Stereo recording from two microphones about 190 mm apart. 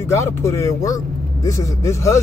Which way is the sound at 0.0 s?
15° left (ahead or behind).